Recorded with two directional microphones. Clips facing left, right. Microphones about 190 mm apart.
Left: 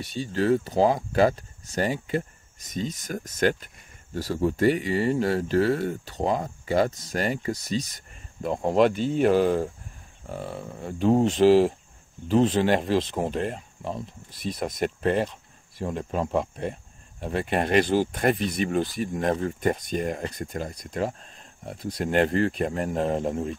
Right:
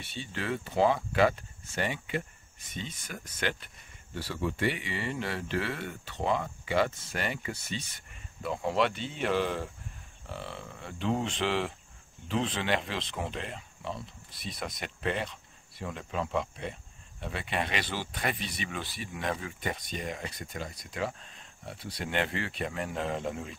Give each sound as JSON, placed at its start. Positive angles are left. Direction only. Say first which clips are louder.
{"t": 0.0, "sound": "speech", "louder": "left 11 dB", "side_deg": 40}